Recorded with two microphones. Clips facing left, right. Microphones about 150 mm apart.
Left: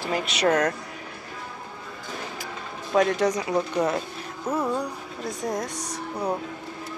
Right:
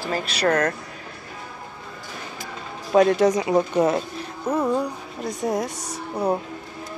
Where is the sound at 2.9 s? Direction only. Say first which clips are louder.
Right 5 dB; 25° right (ahead or behind).